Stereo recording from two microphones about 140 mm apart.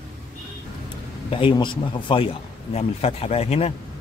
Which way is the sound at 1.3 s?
35° left (ahead or behind).